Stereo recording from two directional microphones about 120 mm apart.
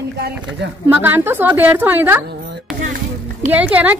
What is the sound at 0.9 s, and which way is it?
A woman's voice, 15° right (ahead or behind).